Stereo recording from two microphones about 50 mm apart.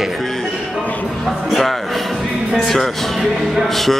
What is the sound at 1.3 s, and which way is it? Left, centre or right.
Speech, centre.